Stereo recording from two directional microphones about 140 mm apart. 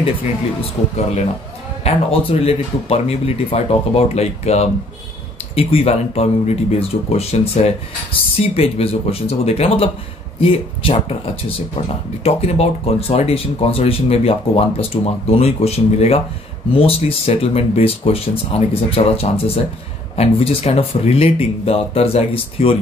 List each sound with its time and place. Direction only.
1.9 s speech: 45° left (ahead or behind)
12.2 s speech: 45° left (ahead or behind)